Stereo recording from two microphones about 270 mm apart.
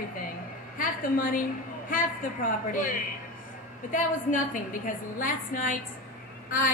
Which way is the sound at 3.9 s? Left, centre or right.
Left.